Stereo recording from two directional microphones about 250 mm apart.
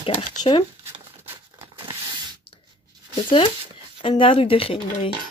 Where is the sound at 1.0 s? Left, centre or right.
Centre.